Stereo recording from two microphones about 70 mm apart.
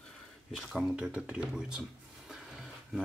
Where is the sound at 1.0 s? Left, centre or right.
Centre.